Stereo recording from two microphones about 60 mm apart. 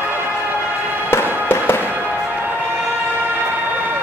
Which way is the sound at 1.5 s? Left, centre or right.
Left.